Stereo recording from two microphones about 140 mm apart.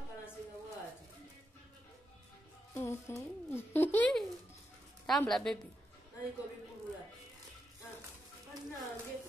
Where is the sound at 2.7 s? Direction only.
20° left (ahead or behind).